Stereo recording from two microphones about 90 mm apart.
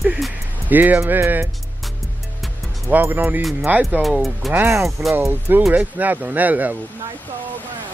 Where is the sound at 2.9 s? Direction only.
25° right (ahead or behind).